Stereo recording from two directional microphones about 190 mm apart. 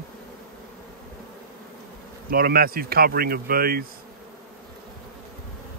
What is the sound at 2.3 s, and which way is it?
Speech, 50° right (ahead or behind).